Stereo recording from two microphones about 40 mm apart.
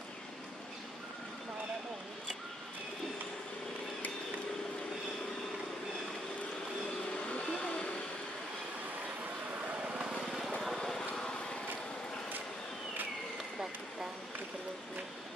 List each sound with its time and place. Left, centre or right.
7.3 s vehicle: left
9.8 s vehicle: right
10.1 s vehicle: centre
11.1 s a sound: centre